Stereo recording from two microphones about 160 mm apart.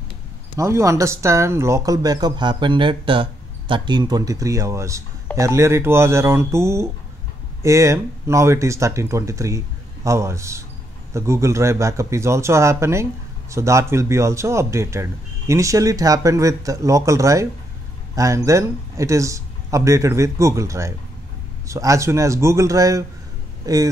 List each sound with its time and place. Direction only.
0.6 s speech: 20° right (ahead or behind)